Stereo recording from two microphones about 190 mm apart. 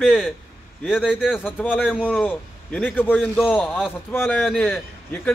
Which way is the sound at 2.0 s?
5° left (ahead or behind).